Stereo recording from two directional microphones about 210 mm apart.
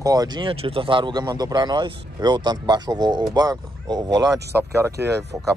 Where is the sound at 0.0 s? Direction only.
20° right (ahead or behind).